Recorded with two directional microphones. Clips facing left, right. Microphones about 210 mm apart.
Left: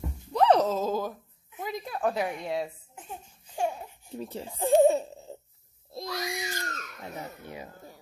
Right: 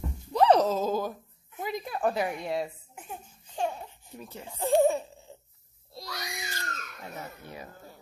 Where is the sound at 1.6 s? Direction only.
Centre (ahead or behind).